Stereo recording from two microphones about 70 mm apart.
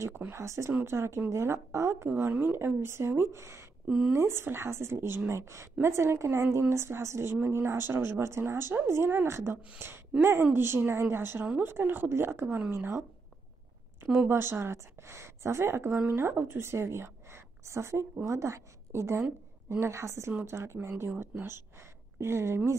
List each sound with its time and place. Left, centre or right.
0.3 s a woman's voice: right
2.1 s speech: right
3.8 s a woman's voice: centre
4.1 s speech: right
14.0 s a woman's voice: right